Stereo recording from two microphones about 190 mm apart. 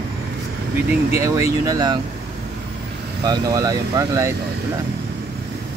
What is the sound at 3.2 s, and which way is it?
Speech, 20° right (ahead or behind).